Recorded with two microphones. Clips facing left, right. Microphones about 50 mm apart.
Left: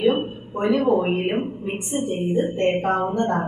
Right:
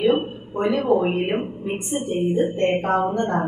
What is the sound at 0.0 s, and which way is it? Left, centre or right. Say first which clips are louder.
A woman's voice: right 1 dB; centre.